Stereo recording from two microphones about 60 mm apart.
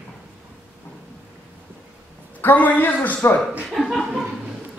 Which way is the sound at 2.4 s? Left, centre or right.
Left.